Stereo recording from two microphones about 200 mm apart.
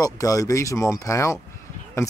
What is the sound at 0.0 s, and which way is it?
Speech, 15° left (ahead or behind).